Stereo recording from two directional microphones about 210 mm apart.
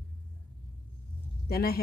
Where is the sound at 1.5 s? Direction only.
45° left (ahead or behind).